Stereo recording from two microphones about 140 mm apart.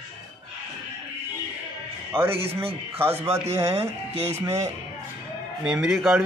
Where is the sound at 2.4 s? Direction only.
45° right (ahead or behind).